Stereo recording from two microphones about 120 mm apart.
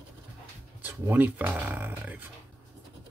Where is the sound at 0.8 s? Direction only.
15° right (ahead or behind).